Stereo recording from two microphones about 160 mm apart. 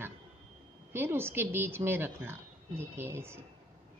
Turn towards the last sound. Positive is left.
turn(degrees=-15)  # may be behind; listen again after turning